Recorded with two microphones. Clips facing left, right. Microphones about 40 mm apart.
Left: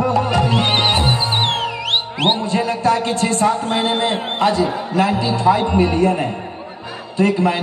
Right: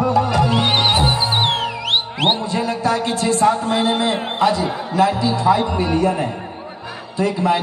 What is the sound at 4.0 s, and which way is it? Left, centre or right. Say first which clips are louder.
A man's voice: even; left.